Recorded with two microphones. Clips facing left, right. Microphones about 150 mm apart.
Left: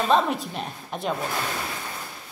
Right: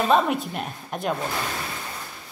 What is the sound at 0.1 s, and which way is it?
A man's voice, 5° right (ahead or behind).